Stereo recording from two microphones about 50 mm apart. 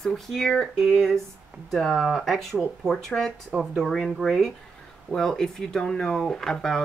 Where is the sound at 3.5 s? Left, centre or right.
Right.